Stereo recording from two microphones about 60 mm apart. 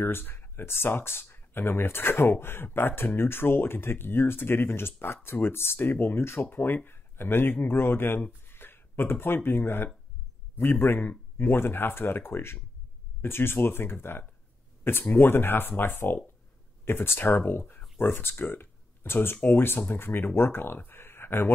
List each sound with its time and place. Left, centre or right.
0.0 s speech: left